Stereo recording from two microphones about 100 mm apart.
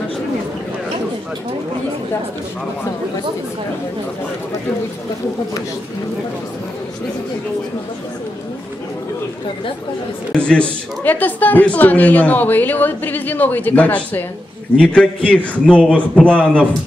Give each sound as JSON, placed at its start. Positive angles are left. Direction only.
{"t": 10.3, "sound": "speech", "side_deg": 10}